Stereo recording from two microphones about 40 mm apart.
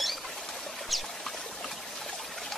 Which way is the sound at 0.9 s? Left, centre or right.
Centre.